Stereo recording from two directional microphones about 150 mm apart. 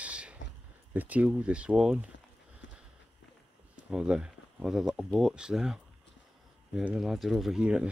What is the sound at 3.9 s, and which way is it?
Speech, 5° right (ahead or behind).